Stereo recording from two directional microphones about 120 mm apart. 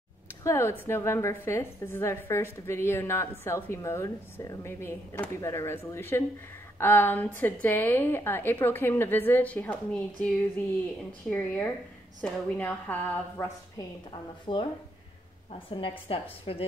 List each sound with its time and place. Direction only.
0.4 s a woman's voice: 25° left (ahead or behind)
11.3 s a woman's voice: 15° left (ahead or behind)
14.4 s a woman's voice: 45° left (ahead or behind)
15.7 s a woman's voice: 45° left (ahead or behind)